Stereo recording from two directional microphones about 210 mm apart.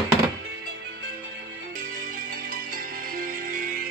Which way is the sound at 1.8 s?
40° right (ahead or behind).